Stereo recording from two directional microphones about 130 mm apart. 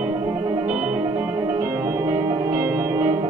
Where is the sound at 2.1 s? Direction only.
30° right (ahead or behind).